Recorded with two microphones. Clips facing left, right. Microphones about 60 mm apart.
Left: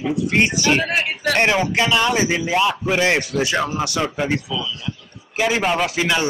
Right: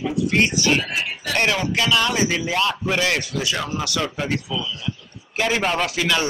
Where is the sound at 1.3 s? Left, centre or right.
Left.